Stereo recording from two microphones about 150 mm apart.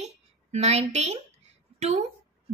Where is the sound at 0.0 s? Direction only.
45° right (ahead or behind).